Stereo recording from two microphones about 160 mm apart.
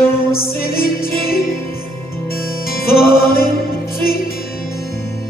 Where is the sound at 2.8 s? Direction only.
70° left (ahead or behind).